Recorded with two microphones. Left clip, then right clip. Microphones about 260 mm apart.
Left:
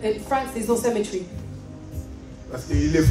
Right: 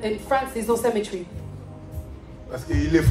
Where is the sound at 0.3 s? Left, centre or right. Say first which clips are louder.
Right 3 dB; centre.